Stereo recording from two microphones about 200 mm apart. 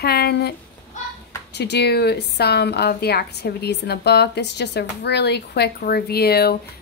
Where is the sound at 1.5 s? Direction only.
55° left (ahead or behind).